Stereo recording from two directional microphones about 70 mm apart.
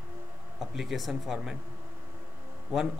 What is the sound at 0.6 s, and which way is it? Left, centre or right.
A man's voice, centre.